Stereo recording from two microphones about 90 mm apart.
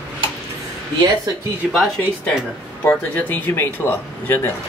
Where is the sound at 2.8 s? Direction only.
20° left (ahead or behind).